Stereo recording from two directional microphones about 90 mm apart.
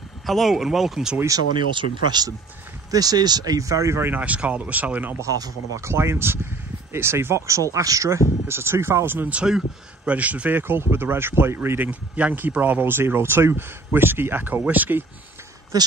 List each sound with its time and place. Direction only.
0.3 s speech: centre (ahead or behind)
1.8 s speech: 55° right (ahead or behind); by 4.2 s 30° right (ahead or behind)
4.2 s speech: 15° right (ahead or behind)
5.2 s speech: 40° right (ahead or behind)
5.9 s speech: 30° right (ahead or behind)
11.9 s speech: 15° right (ahead or behind)
15.7 s speech: 45° right (ahead or behind)